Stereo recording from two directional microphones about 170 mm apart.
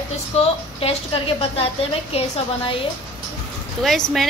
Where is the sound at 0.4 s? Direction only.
35° left (ahead or behind).